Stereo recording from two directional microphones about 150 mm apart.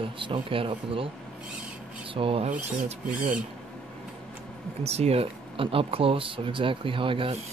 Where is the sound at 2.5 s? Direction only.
55° right (ahead or behind).